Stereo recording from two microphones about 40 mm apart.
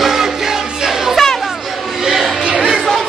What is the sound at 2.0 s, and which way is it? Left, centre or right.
Music, centre.